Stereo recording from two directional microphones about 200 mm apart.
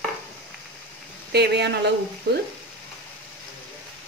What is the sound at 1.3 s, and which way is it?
Speech, 55° right (ahead or behind).